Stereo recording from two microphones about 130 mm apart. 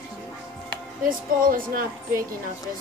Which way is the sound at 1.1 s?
90° right.